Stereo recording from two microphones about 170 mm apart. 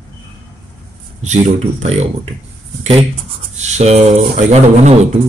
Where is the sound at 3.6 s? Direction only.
40° right (ahead or behind).